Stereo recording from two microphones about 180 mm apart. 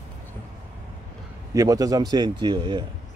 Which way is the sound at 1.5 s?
20° right (ahead or behind).